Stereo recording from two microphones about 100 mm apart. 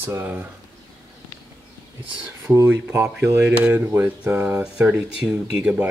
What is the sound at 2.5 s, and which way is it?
Speech, 20° right (ahead or behind).